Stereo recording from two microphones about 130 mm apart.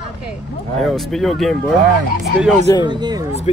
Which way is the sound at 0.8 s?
Centre (ahead or behind).